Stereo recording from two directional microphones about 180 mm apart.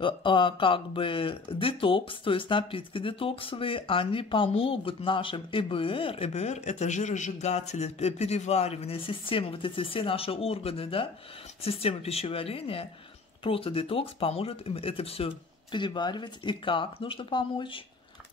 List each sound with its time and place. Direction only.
0.0 s speech: 25° left (ahead or behind)